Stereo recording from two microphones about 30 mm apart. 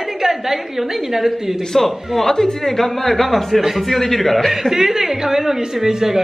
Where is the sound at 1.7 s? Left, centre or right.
Centre.